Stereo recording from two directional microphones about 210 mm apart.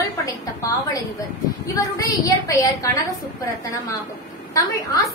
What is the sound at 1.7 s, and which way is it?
A woman's voice, 15° left (ahead or behind).